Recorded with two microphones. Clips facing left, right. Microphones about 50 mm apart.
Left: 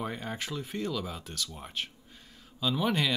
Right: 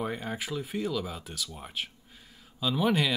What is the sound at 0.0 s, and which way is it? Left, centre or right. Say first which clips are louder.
Speech: right 2 dB; centre.